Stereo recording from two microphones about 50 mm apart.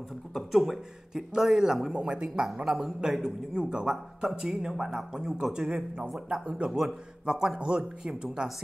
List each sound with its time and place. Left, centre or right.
0.3 s a man's voice: centre; by 2.2 s right
2.6 s a man's voice: centre
6.2 s a man's voice: right